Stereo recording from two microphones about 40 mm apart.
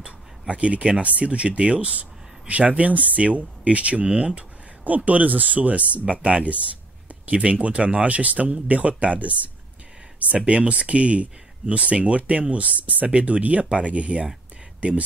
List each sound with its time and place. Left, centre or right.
0.0 s speech: right
4.8 s speech: right